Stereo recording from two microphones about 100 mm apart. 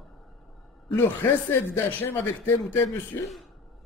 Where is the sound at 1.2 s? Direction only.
20° left (ahead or behind).